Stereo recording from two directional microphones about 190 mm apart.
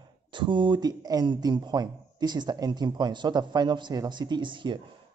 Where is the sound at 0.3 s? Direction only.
25° right (ahead or behind).